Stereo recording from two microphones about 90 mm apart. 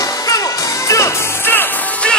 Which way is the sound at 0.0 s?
40° left (ahead or behind).